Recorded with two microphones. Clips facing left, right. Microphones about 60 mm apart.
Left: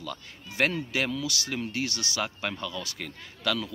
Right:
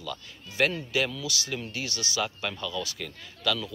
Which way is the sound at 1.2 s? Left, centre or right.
Left.